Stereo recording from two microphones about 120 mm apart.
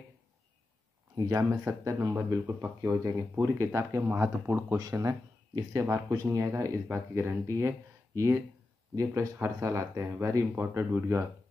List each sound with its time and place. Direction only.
1.1 s speech: 30° right (ahead or behind)
4.7 s speech: 30° right (ahead or behind)